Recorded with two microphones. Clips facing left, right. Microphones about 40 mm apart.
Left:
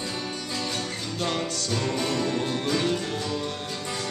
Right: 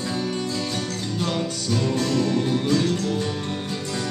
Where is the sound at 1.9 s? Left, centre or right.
Left.